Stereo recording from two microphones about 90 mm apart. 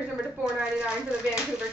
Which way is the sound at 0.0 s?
10° right (ahead or behind).